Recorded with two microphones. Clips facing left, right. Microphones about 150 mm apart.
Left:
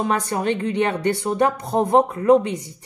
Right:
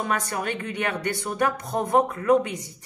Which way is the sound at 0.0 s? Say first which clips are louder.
Left 5 dB; 25° left (ahead or behind).